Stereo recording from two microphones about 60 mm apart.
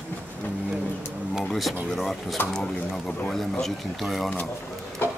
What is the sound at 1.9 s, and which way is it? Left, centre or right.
Speech, centre.